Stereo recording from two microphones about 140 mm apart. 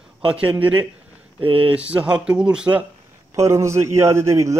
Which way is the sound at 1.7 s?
10° right (ahead or behind).